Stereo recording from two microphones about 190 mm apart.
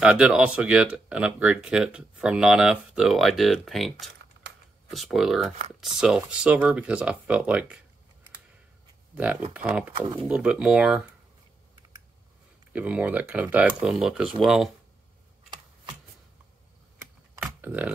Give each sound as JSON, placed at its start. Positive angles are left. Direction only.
{"t": 0.0, "sound": "speech", "side_deg": -5}
{"t": 4.2, "sound": "typing", "side_deg": -65}
{"t": 4.9, "sound": "speech", "side_deg": 0}
{"t": 9.1, "sound": "speech", "side_deg": -10}
{"t": 12.7, "sound": "speech", "side_deg": -10}
{"t": 15.5, "sound": "shuffling cards", "side_deg": -25}
{"t": 17.4, "sound": "a sound", "side_deg": -10}